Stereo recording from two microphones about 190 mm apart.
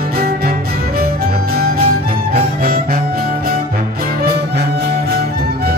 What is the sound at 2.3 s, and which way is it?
Music, 50° right (ahead or behind).